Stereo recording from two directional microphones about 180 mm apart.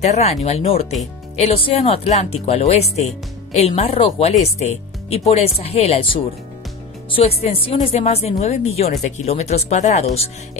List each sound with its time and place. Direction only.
0.0 s speech: 35° left (ahead or behind)